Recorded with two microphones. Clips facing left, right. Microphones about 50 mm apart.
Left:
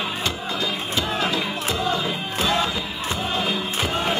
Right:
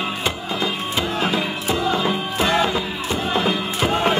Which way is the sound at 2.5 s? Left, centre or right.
Right.